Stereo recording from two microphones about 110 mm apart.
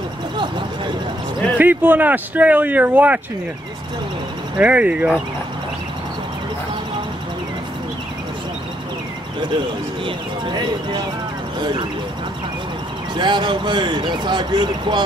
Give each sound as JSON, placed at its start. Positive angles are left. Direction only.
{"t": 1.6, "sound": "speech", "side_deg": -15}
{"t": 4.6, "sound": "speech", "side_deg": -10}
{"t": 10.0, "sound": "speech", "side_deg": -45}
{"t": 13.1, "sound": "speech", "side_deg": -45}